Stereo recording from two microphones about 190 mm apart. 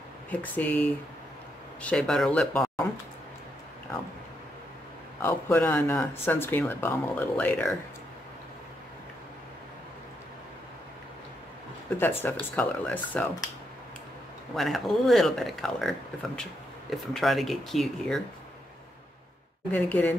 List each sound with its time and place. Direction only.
0.3 s speech: 10° left (ahead or behind)
5.2 s speech: 10° left (ahead or behind)
12.0 s speech: 10° left (ahead or behind)
14.5 s speech: centre (ahead or behind)
19.7 s speech: 10° left (ahead or behind)